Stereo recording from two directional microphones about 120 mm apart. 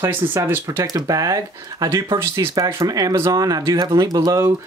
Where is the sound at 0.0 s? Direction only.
20° right (ahead or behind).